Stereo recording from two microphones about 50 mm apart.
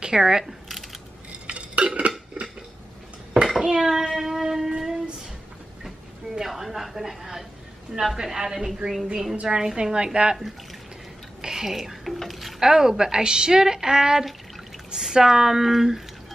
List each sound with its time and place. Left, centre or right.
0.0 s speech: centre
1.5 s dishes: right
3.5 s a sound: centre
8.0 s speech: centre
9.4 s speech: centre
11.4 s a sound: centre
12.2 s speech: centre